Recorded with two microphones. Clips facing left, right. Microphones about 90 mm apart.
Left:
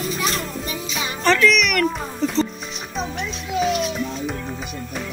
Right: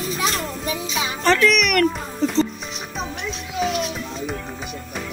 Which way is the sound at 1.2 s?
30° right (ahead or behind).